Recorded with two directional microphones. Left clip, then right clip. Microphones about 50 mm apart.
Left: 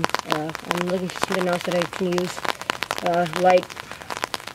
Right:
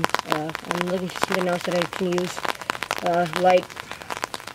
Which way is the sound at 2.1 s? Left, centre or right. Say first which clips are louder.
Left 1 dB; centre.